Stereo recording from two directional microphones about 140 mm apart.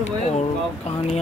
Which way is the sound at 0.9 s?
40° left (ahead or behind).